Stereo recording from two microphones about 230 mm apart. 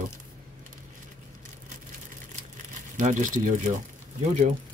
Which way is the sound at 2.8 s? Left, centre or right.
Right.